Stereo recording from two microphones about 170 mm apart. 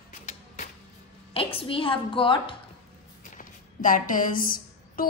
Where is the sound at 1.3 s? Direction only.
35° left (ahead or behind).